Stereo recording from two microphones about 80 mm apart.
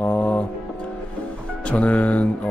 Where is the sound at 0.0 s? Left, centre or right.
Left.